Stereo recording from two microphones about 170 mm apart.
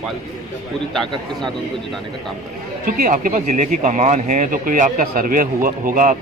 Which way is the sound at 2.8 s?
55° right (ahead or behind).